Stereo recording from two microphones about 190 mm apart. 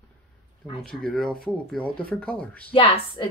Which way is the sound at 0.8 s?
Centre (ahead or behind).